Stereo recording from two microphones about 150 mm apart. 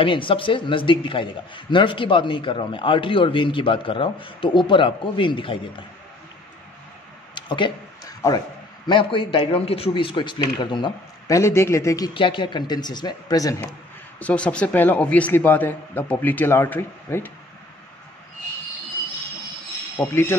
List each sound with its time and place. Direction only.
0.0 s a man's voice: 35° left (ahead or behind)
7.3 s a sound: 30° left (ahead or behind)
8.2 s speech: 20° left (ahead or behind)
8.8 s a man's voice: 30° left (ahead or behind)
12.1 s speech: 35° left (ahead or behind)
14.2 s speech: 10° left (ahead or behind)
20.0 s speech: 15° left (ahead or behind)